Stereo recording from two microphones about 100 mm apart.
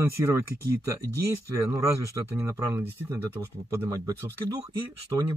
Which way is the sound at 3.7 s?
35° right (ahead or behind).